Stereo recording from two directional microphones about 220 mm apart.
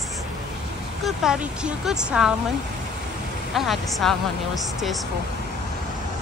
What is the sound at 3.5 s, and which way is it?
Speech, centre (ahead or behind).